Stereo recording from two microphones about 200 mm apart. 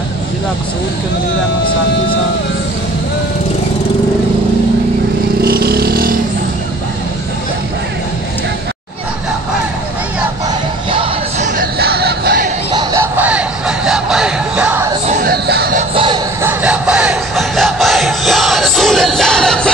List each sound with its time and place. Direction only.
5.4 s vehicle: 50° right (ahead or behind)
10.9 s music: 25° right (ahead or behind)
11.4 s music: 45° right (ahead or behind)
12.7 s a sound: 15° right (ahead or behind)
15.1 s music: 50° right (ahead or behind)
15.9 s music: 25° right (ahead or behind)
16.4 s crowd: 5° right (ahead or behind)